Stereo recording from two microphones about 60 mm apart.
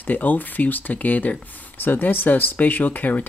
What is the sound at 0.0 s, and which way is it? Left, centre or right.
Speech, left.